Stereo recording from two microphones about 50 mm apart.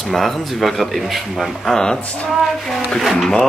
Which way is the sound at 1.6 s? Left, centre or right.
Centre.